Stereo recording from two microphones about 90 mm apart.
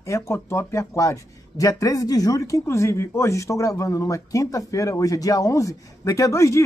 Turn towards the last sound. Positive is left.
turn(degrees=35)  # may be behind; listen again after turning